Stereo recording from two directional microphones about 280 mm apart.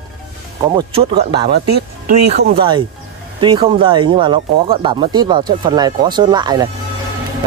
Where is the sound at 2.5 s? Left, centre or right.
Centre.